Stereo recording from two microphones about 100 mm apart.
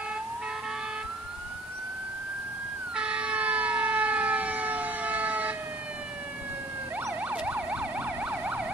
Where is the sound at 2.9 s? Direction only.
10° right (ahead or behind).